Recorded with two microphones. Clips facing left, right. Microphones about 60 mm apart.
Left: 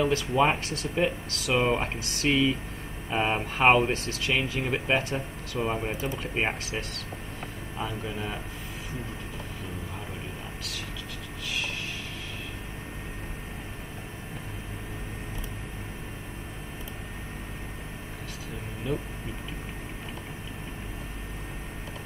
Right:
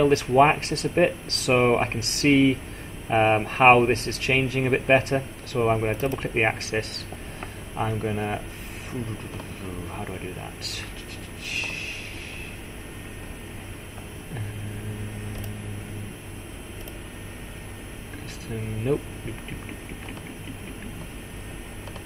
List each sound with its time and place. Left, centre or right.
0.0 s speech: right
2.0 s speech: right
7.3 s insect: right